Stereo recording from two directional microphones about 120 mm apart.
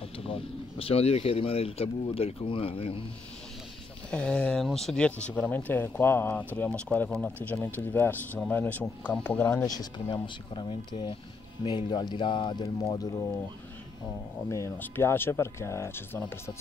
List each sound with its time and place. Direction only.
0.2 s speech: 50° left (ahead or behind)
4.1 s speech: 10° left (ahead or behind)
9.7 s speech: 35° left (ahead or behind)
14.5 s speech: 20° left (ahead or behind)